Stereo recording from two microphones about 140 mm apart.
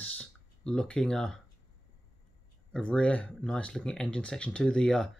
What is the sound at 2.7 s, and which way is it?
Speech, 5° left (ahead or behind).